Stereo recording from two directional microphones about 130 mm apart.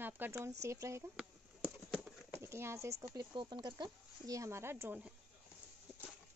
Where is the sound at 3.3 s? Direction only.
35° right (ahead or behind); by 5.1 s 15° right (ahead or behind).